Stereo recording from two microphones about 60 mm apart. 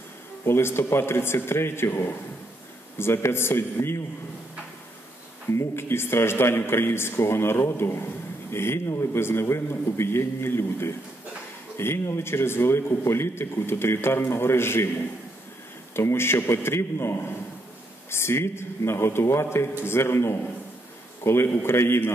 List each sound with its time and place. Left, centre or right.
0.5 s a man's voice: left
5.5 s a man's voice: left
15.9 s a man's voice: left
18.1 s a man's voice: left